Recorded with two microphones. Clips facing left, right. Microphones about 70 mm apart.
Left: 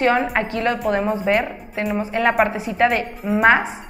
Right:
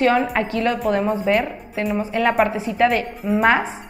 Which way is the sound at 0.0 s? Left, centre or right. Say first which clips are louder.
Even; centre.